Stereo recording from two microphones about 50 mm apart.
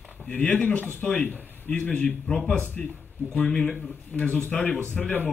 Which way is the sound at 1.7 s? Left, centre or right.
Left.